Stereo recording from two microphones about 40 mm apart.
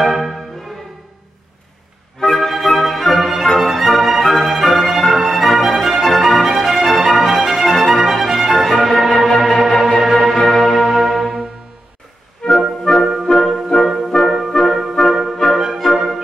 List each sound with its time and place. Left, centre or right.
0.0 s music: centre
2.3 s flute: centre
3.6 s music: centre
10.3 s church bell: centre
12.4 s music: left
12.9 s music: centre
14.5 s music: centre
15.1 s music: centre